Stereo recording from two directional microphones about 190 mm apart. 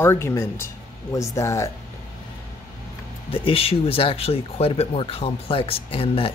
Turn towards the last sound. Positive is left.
turn(degrees=30)  # may be behind; listen again after turning